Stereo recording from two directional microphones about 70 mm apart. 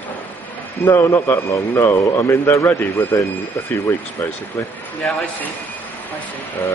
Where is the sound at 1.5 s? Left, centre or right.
Left.